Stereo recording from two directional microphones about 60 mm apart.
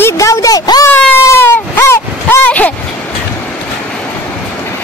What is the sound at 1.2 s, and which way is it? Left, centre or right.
Whimper, left.